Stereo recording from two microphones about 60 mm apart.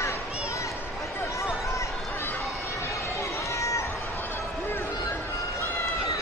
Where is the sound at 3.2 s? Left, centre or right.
Left.